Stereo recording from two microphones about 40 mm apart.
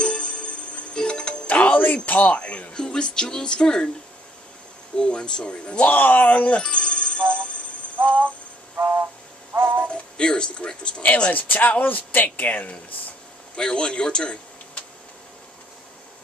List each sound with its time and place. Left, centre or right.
0.0 s music: left
1.5 s music: left
2.0 s speech: left
4.9 s speech: left
5.9 s speech: left
6.5 s music: left
8.0 s music: right
9.5 s synthetic singing: right
10.1 s speech: left
11.3 s speech: left
13.6 s speech: left